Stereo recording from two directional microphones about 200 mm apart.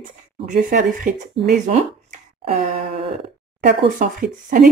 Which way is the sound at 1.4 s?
35° right (ahead or behind).